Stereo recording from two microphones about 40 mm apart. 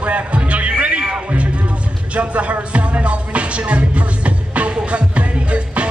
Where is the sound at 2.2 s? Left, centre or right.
Right.